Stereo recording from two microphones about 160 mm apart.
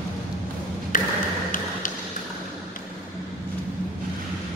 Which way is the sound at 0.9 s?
55° left (ahead or behind).